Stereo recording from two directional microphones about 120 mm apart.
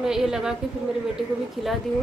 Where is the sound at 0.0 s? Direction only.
5° right (ahead or behind).